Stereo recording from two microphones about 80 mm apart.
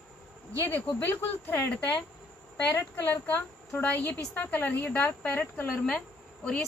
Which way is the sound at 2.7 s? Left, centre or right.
Left.